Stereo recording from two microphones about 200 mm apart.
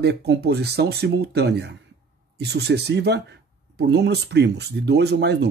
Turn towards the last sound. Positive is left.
turn(degrees=-55)  # may be behind; listen again after turning